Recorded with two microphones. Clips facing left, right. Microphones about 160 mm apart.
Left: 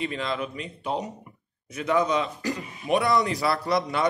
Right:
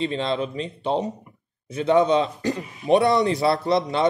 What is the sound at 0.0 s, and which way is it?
A man's voice, 30° right (ahead or behind).